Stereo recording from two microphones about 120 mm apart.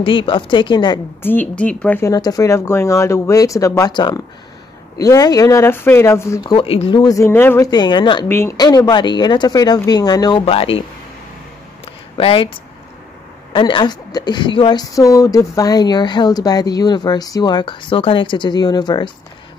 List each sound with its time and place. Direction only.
0.0 s speech: 45° left (ahead or behind)
1.2 s speech: 15° left (ahead or behind)
2.0 s speech: 30° left (ahead or behind)
6.5 s speech: 50° left (ahead or behind)
7.0 s speech: 30° left (ahead or behind)
7.2 s speech: 20° left (ahead or behind)
7.7 s speech: 40° left (ahead or behind)
8.3 s speech: 20° left (ahead or behind)
8.5 s speech: 35° left (ahead or behind)
10.4 s speech: 50° left (ahead or behind)
11.8 s a sound: 50° left (ahead or behind)
13.5 s speech: 45° left (ahead or behind)